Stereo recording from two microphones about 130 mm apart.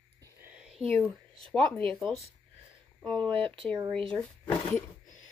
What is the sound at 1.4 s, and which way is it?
Speech, 10° left (ahead or behind).